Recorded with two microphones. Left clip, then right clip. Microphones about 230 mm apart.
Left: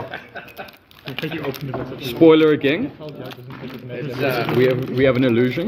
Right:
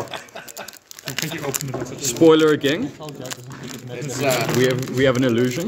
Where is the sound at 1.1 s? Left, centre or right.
Right.